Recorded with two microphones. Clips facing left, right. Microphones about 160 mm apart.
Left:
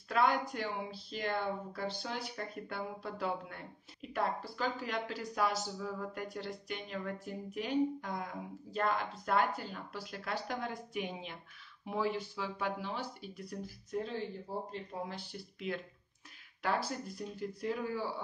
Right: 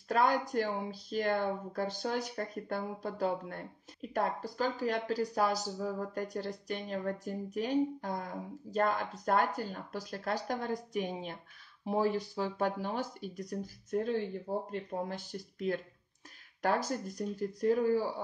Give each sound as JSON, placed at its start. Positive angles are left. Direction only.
{"t": 0.1, "sound": "speech", "side_deg": -40}